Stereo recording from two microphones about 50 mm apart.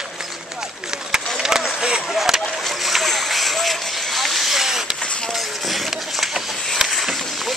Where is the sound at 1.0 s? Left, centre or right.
Centre.